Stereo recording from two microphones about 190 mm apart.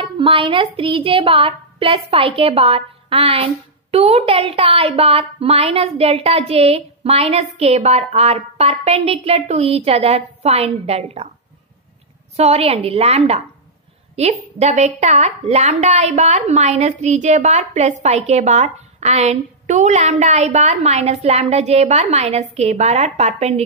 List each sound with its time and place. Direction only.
0.0 s a woman's voice: 25° right (ahead or behind)
12.4 s a woman's voice: 30° right (ahead or behind)